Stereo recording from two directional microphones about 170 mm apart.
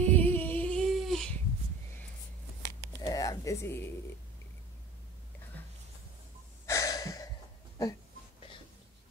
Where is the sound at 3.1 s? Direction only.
20° left (ahead or behind).